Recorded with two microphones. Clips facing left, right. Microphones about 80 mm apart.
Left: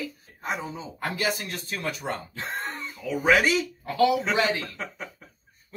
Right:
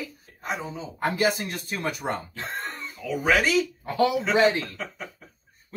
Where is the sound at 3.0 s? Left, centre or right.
Centre.